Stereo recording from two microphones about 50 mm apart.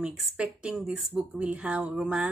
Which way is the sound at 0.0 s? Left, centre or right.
Right.